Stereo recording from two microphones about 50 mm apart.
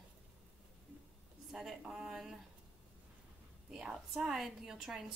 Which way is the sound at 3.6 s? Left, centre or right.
Centre.